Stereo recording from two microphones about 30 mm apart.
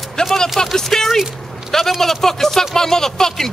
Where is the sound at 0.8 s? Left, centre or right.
Centre.